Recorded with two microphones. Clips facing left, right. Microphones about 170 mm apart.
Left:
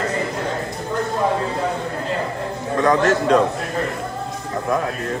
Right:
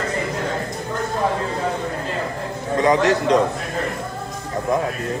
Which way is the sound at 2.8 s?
20° right (ahead or behind).